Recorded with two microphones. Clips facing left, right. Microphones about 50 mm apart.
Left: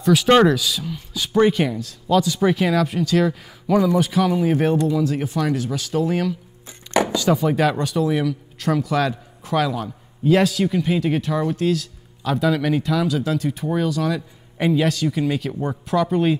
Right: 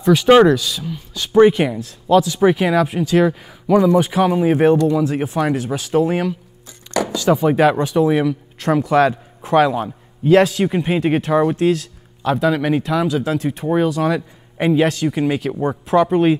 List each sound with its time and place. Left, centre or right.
0.1 s speech: centre
1.3 s speech: centre
2.1 s speech: centre
3.9 s speech: right
6.9 s chopping: left
7.2 s speech: centre
7.4 s speech: centre
10.5 s speech: right
12.4 s speech: centre